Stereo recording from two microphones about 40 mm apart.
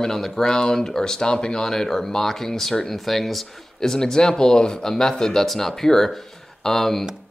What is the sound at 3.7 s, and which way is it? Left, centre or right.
Speech, centre.